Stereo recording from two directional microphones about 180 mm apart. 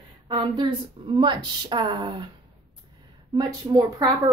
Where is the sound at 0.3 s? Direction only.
25° right (ahead or behind).